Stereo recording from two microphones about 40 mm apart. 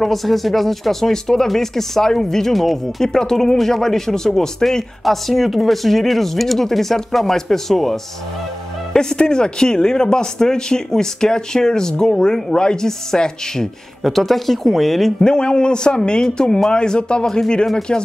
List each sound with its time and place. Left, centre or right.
0.0 s speech: centre
8.9 s speech: centre
15.2 s a man's voice: left